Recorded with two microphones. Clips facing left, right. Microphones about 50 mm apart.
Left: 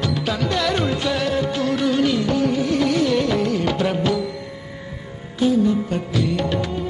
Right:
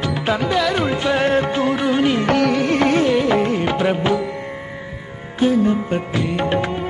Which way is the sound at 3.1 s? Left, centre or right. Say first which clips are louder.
Right 3 dB; right.